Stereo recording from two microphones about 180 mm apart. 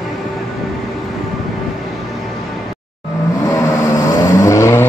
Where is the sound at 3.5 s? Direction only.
15° left (ahead or behind).